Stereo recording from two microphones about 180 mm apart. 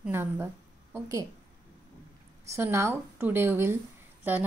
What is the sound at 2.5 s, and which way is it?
A woman's voice, 15° right (ahead or behind).